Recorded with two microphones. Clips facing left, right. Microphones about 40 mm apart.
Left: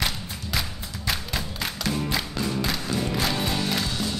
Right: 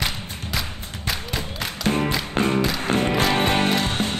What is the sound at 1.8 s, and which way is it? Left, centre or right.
Music, right.